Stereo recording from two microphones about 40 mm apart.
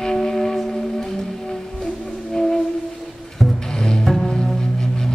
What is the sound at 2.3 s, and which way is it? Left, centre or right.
Music, centre.